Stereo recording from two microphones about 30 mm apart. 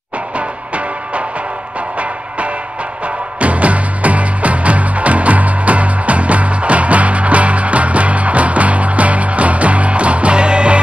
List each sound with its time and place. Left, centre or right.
0.4 s music: right
3.3 s music: right